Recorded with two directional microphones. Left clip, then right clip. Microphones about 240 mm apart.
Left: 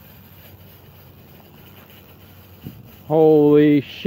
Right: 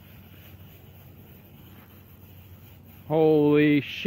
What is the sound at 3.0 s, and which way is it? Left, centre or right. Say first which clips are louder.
Speech: left 7 dB; left.